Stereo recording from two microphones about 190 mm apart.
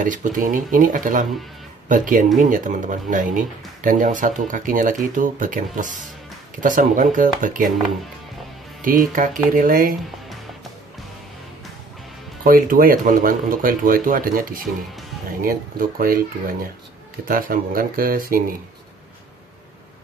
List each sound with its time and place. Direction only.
0.0 s speech: 45° right (ahead or behind)
8.8 s speech: 45° right (ahead or behind)
12.4 s speech: 50° right (ahead or behind)